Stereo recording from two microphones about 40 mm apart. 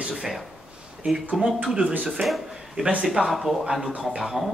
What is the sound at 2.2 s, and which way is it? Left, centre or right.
Speech, centre.